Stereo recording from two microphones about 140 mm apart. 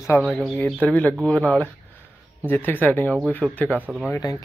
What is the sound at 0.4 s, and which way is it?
Speech, 5° left (ahead or behind).